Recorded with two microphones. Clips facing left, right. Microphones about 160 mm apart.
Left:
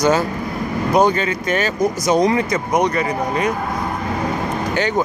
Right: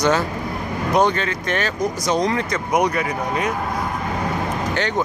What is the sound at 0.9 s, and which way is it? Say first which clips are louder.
Speech: left 3 dB; 5° left (ahead or behind).